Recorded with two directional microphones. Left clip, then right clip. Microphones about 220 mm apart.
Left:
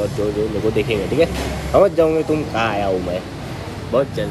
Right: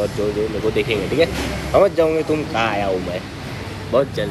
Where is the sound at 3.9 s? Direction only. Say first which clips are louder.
Right 1 dB; 10° left (ahead or behind).